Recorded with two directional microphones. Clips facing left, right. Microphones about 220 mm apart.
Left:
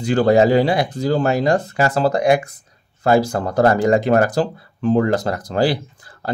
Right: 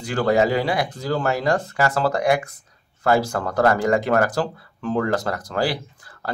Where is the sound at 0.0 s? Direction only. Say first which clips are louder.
Left 5 dB; 25° left (ahead or behind).